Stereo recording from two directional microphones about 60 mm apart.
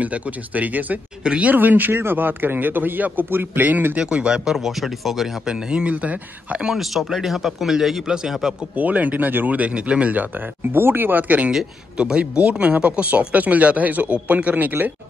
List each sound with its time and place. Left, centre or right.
0.0 s a man's voice: right
4.0 s a man's voice: centre
5.4 s speech: centre
6.7 s a man's voice: centre
8.7 s speech: right
10.7 s a man's voice: right